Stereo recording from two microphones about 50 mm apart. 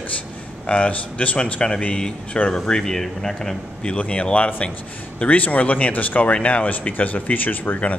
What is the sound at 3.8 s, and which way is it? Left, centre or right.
Speech, left.